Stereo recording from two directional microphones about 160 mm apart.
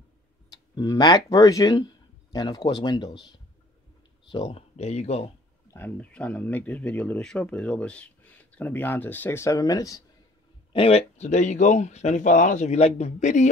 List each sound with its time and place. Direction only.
0.5 s speech: 25° left (ahead or behind); by 5.3 s 40° left (ahead or behind)
5.7 s speech: 10° left (ahead or behind)
10.7 s speech: 40° left (ahead or behind)